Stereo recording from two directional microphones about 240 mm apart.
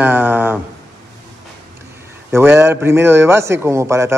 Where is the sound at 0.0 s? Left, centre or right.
Centre.